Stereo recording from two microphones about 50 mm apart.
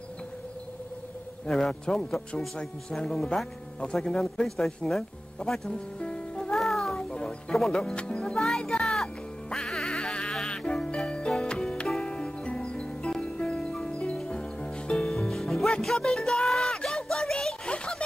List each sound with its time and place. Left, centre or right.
1.5 s a man's voice: centre
2.5 s a man's voice: centre
5.4 s speech: centre
5.9 s music: centre
6.5 s music: centre
7.7 s speech: centre
8.4 s music: centre
10.4 s insect: centre
11.0 s music: centre
14.1 s music: centre
15.0 s music: centre